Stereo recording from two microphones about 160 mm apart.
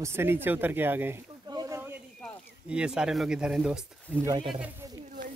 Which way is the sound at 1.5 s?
20° right (ahead or behind).